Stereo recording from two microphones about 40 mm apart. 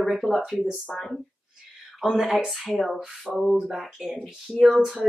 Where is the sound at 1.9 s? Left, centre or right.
Centre.